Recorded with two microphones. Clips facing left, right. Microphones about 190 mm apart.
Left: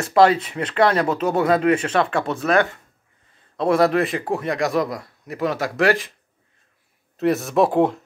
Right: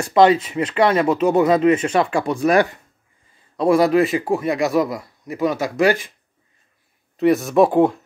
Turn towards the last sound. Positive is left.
turn(degrees=0)  # may be behind; listen again after turning